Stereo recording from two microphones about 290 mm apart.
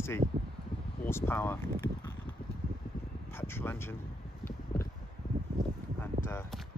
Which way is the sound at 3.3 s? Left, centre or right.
Centre.